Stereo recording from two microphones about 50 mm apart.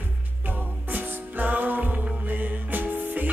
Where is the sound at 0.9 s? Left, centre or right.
Right.